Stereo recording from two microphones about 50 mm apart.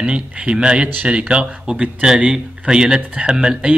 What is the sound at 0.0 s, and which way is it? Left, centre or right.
Speech, right.